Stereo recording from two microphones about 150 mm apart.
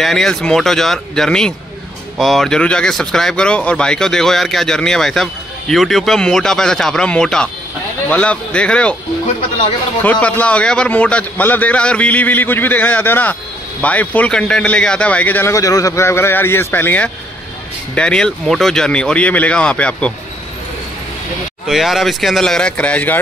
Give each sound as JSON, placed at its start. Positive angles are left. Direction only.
{"t": 0.0, "sound": "a man's voice", "side_deg": 0}
{"t": 10.0, "sound": "a man's voice", "side_deg": 10}
{"t": 21.6, "sound": "speech", "side_deg": 0}